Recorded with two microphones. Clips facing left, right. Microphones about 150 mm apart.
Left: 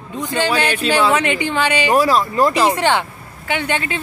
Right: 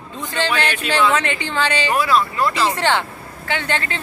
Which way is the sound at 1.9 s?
40° left (ahead or behind).